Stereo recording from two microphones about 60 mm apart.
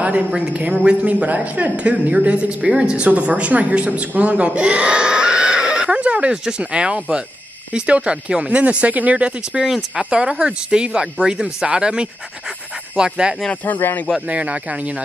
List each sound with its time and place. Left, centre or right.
0.6 s speech: right
13.5 s speech: left
14.2 s speech: right